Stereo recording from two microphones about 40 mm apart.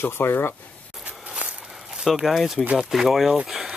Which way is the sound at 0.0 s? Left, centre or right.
Left.